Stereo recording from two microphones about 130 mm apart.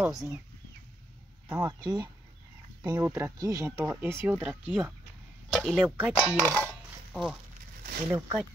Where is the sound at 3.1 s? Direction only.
25° right (ahead or behind).